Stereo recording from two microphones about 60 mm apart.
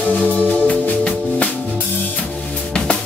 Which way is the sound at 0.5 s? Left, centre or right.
Left.